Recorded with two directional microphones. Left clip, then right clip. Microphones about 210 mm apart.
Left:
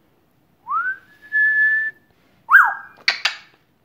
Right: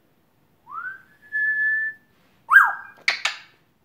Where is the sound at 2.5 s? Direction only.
5° left (ahead or behind).